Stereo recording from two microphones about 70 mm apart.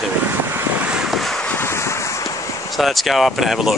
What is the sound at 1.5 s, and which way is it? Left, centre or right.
Vehicle, left.